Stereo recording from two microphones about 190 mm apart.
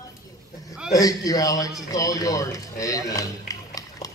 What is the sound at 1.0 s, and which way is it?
A man's voice, 20° left (ahead or behind).